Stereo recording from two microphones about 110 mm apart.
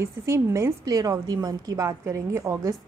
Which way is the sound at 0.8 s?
35° right (ahead or behind).